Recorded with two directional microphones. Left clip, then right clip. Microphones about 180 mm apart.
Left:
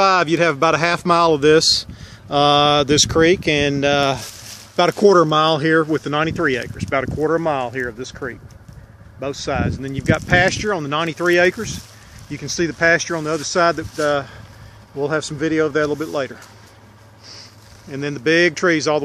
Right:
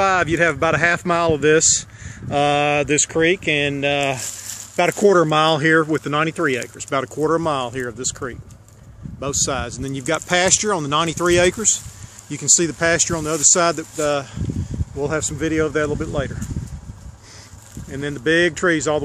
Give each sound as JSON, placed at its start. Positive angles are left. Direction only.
{"t": 0.0, "sound": "speech", "side_deg": 10}
{"t": 4.7, "sound": "speech", "side_deg": 10}
{"t": 5.3, "sound": "speech", "side_deg": -10}
{"t": 6.9, "sound": "speech", "side_deg": -25}
{"t": 12.5, "sound": "speech", "side_deg": -20}
{"t": 17.9, "sound": "speech", "side_deg": -5}